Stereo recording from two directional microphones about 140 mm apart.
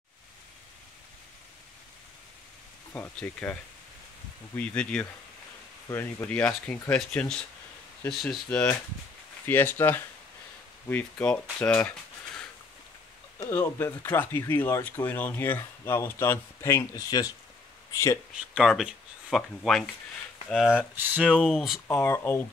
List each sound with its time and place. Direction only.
2.9 s speech: 10° left (ahead or behind)
4.6 s speech: 10° left (ahead or behind)
8.5 s speech: 10° left (ahead or behind)
11.6 s a sound: 10° left (ahead or behind)
13.4 s speech: 15° left (ahead or behind)
18.5 s speech: centre (ahead or behind)
20.9 s speech: 15° right (ahead or behind)
21.8 s speech: 20° left (ahead or behind)